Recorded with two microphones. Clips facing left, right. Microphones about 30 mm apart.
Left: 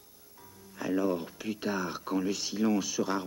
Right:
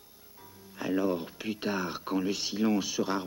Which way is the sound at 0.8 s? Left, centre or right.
Right.